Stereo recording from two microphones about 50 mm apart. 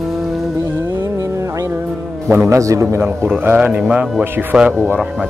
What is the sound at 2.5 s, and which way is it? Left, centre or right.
Speech, right.